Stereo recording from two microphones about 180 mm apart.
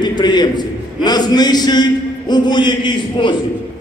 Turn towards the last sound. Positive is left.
turn(degrees=25)  # may be behind; listen again after turning